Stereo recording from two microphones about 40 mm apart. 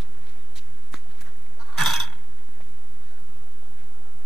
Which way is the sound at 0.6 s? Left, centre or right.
Centre.